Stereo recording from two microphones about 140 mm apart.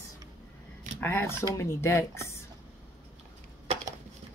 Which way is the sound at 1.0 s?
20° left (ahead or behind).